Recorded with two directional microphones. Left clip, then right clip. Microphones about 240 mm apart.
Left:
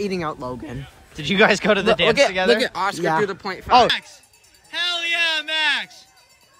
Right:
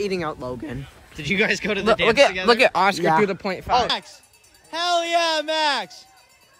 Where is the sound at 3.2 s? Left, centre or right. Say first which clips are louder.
Right 2 dB; left.